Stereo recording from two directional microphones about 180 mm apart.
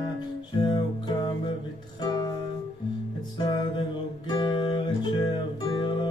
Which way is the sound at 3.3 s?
25° left (ahead or behind).